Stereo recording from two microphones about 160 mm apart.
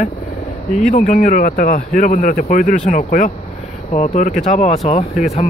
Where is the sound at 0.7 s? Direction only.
50° left (ahead or behind).